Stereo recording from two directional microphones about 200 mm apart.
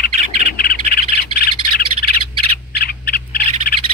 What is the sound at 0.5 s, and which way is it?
Bird, 45° left (ahead or behind).